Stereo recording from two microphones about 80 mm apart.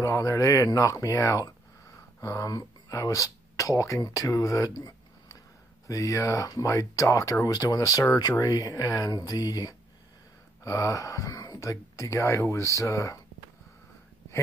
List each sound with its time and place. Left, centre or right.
0.0 s speech: left
8.3 s speech: left